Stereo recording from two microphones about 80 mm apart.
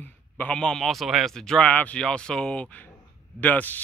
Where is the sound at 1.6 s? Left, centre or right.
Centre.